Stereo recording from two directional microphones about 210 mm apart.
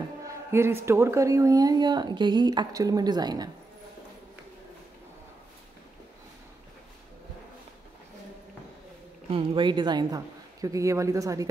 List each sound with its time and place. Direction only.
0.2 s a woman's voice: 15° right (ahead or behind)
9.3 s a woman's voice: 25° right (ahead or behind)